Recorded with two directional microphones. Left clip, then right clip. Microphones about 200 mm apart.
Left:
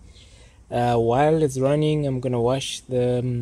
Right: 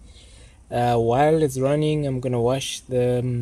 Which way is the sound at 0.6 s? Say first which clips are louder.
Even; centre (ahead or behind).